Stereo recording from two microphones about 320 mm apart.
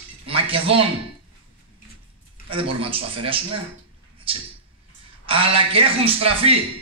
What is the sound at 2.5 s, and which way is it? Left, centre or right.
Speech, centre.